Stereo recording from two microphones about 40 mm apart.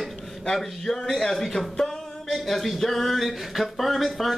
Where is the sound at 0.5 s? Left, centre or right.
Centre.